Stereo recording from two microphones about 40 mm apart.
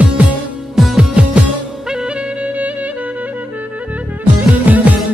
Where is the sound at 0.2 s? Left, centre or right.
Right.